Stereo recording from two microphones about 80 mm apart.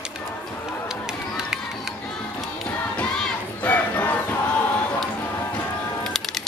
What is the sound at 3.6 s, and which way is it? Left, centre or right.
Crowd, left.